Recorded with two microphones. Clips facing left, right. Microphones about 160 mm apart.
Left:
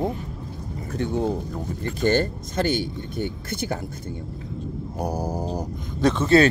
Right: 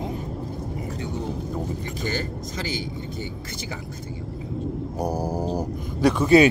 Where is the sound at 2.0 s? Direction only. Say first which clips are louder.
Left 10 dB; 60° left (ahead or behind).